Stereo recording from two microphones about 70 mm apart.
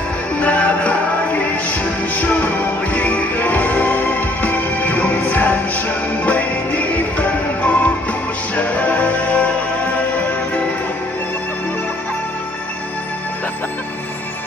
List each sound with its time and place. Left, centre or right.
0.4 s music: left